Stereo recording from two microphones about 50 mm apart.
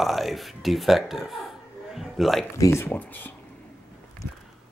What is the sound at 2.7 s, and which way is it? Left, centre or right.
Speech, left.